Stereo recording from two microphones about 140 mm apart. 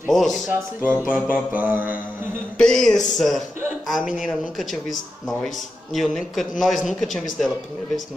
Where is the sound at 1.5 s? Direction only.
10° right (ahead or behind).